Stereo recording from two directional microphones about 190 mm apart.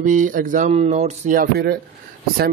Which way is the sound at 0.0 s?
45° right (ahead or behind).